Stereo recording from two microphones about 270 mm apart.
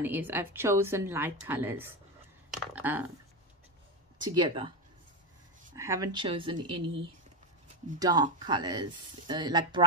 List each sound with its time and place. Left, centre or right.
0.0 s a woman's voice: centre
4.2 s a woman's voice: centre
5.8 s a woman's voice: centre
8.0 s a woman's voice: centre